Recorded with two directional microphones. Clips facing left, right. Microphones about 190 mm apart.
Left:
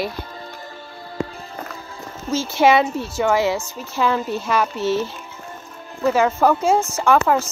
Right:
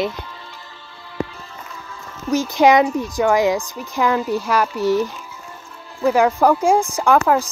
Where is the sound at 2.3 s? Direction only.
15° right (ahead or behind).